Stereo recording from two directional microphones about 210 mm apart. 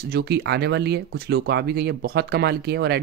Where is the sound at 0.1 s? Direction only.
55° right (ahead or behind).